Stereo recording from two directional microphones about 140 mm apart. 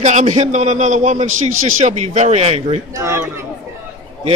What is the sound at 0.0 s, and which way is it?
A man's voice, 60° right (ahead or behind).